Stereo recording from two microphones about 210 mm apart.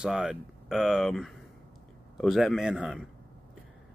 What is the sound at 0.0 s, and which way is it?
A man's voice, 5° right (ahead or behind).